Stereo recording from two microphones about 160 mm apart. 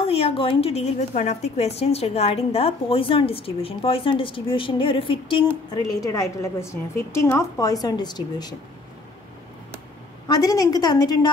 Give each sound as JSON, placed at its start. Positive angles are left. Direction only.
{"t": 0.0, "sound": "a woman's voice", "side_deg": 35}
{"t": 5.9, "sound": "a woman's voice", "side_deg": 20}
{"t": 10.2, "sound": "a woman's voice", "side_deg": 25}